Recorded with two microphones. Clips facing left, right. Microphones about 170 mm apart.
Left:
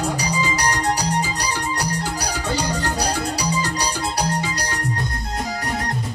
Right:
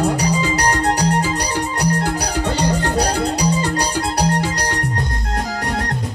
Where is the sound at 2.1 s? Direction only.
60° right (ahead or behind).